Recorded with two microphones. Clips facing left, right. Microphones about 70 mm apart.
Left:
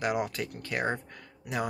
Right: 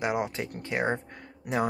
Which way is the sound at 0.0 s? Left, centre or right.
Right.